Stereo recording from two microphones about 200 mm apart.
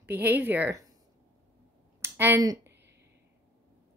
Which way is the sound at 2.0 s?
10° right (ahead or behind).